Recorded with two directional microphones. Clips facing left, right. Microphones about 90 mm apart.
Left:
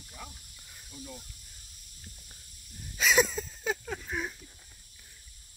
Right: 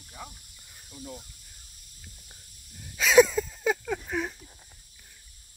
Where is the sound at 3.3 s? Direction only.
60° right (ahead or behind).